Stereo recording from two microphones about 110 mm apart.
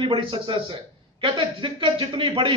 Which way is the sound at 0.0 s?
50° right (ahead or behind).